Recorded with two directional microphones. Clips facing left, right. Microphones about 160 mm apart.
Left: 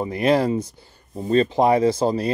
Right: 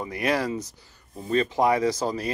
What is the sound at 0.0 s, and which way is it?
Speech, 25° left (ahead or behind).